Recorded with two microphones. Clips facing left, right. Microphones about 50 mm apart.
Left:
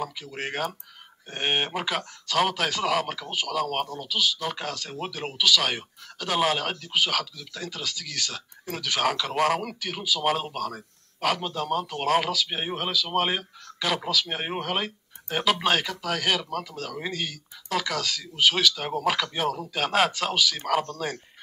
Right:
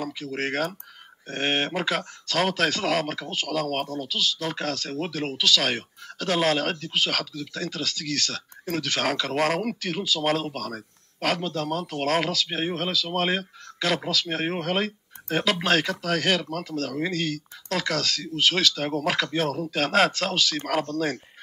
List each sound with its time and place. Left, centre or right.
0.4 s speech: centre